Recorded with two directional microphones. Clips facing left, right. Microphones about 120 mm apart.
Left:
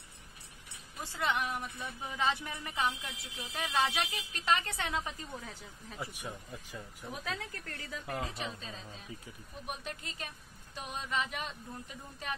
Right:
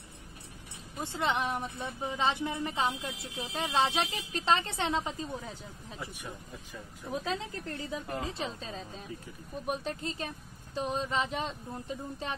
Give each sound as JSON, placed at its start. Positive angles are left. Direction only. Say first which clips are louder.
{"t": 1.0, "sound": "a woman's voice", "louder": "right 3 dB", "side_deg": -25}
{"t": 5.9, "sound": "speech", "louder": "left 1 dB", "side_deg": 15}
{"t": 7.1, "sound": "a woman's voice", "louder": "right 6 dB", "side_deg": -20}